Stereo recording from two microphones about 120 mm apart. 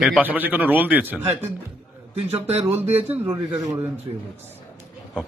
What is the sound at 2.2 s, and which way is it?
Speech, 60° right (ahead or behind).